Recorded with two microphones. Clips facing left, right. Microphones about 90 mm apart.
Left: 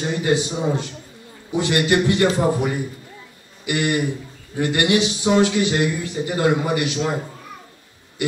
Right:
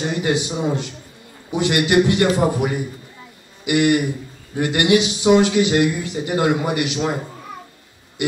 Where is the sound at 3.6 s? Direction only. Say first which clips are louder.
Right 4 dB; 15° right (ahead or behind).